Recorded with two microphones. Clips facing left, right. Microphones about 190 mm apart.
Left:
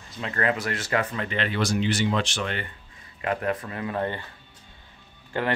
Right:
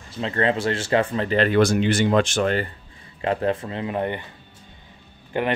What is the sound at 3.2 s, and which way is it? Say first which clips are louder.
Speech: right 4 dB; 30° right (ahead or behind).